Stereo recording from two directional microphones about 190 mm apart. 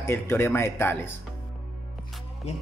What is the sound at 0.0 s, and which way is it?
Speech, 10° left (ahead or behind).